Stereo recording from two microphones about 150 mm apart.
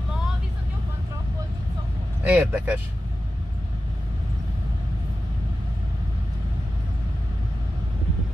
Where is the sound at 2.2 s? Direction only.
10° right (ahead or behind).